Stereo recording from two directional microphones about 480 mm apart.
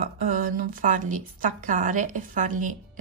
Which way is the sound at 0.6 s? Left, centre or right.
Centre.